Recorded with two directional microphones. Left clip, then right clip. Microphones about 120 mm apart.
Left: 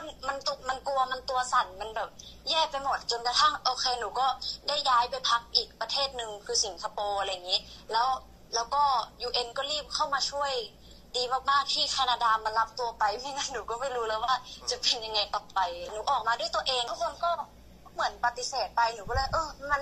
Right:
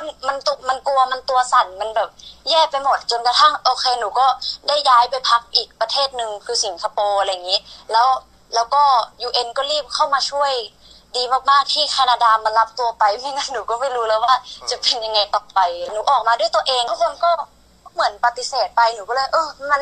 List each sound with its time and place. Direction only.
0.0 s a woman's voice: 40° right (ahead or behind)